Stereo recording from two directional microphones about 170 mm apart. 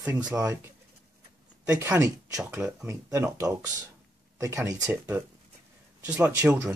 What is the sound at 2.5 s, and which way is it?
Speech, 5° right (ahead or behind).